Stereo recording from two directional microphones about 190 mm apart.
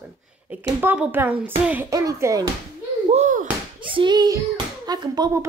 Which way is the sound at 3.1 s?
40° right (ahead or behind).